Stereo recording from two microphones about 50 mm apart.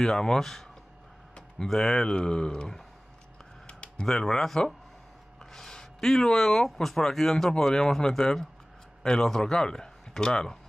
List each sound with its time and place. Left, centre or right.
0.0 s speech: centre
3.6 s a sound: left
4.1 s a man's voice: centre